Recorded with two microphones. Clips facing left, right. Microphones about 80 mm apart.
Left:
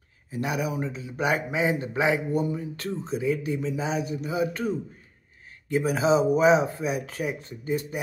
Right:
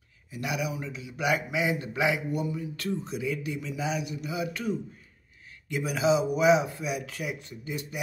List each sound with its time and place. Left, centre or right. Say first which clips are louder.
0.3 s a man's voice: left 4 dB; left